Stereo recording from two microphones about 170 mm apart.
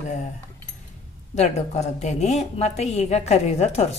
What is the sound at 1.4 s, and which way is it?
A woman's voice, 40° left (ahead or behind).